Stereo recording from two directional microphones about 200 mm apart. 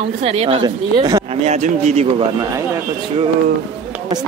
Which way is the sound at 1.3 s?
35° right (ahead or behind).